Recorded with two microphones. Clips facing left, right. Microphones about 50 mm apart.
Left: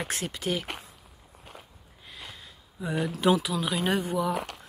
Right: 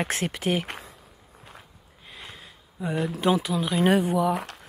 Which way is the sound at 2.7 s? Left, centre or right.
Centre.